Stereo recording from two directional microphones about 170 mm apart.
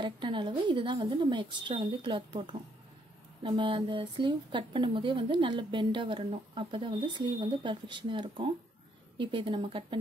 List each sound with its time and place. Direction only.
0.0 s speech: 30° right (ahead or behind)